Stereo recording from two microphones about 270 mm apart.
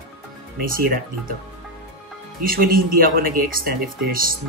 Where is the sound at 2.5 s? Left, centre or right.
Right.